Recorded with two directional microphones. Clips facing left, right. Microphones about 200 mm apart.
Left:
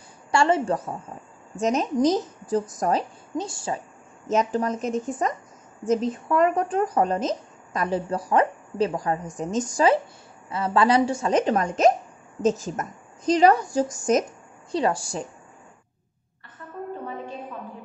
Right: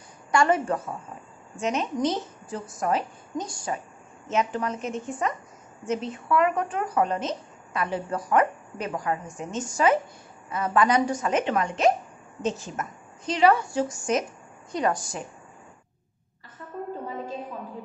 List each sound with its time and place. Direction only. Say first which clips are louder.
0.3 s a woman's voice: left 1 dB; 30° left (ahead or behind)
1.6 s a woman's voice: left 4 dB; 40° left (ahead or behind)
4.3 s speech: left 4 dB; 40° left (ahead or behind)
14.7 s speech: left 2 dB; 30° left (ahead or behind)